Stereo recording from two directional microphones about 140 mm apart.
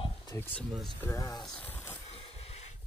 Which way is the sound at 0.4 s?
10° left (ahead or behind).